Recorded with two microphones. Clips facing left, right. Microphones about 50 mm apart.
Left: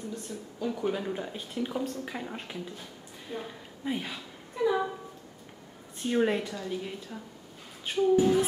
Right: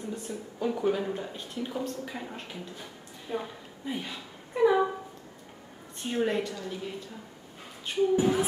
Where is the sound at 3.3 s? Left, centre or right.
Centre.